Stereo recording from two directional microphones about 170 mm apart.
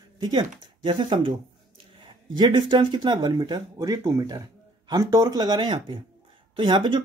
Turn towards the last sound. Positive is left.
turn(degrees=-30)  # may be behind; listen again after turning